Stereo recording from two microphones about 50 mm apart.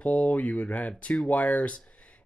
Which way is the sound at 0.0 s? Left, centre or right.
Left.